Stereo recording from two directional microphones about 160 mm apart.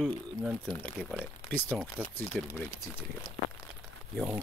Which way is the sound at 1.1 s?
10° left (ahead or behind).